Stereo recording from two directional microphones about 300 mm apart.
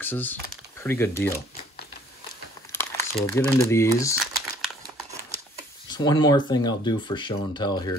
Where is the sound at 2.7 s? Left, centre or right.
Centre.